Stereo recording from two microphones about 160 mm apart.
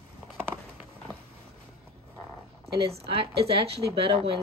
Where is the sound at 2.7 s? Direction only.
85° right.